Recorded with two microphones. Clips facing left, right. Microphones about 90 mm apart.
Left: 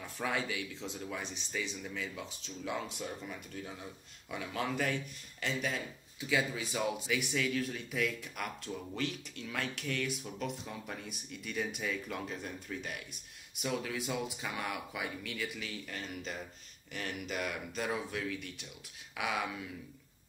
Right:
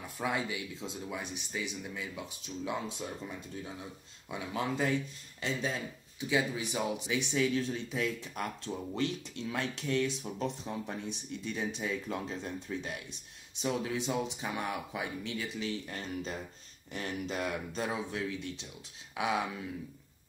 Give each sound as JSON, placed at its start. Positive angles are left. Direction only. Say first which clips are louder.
{"t": 0.2, "sound": "speech", "louder": "right 1 dB", "side_deg": -20}
{"t": 6.2, "sound": "speech", "louder": "right 2 dB", "side_deg": -20}
{"t": 19.1, "sound": "a sound", "louder": "right 4 dB", "side_deg": -25}